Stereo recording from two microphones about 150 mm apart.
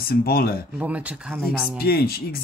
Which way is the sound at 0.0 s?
90° left.